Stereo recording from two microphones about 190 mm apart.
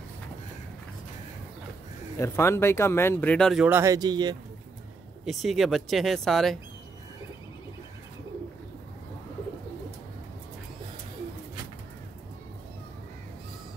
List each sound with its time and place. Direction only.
2.1 s speech: 15° left (ahead or behind)
3.6 s speech: 15° right (ahead or behind)
5.2 s speech: centre (ahead or behind)